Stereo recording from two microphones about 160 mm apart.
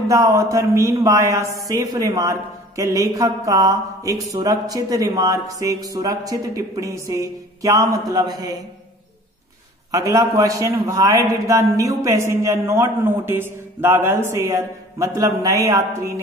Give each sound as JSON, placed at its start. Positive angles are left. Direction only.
{"t": 0.1, "sound": "a man's voice", "side_deg": -20}
{"t": 9.8, "sound": "a man's voice", "side_deg": -20}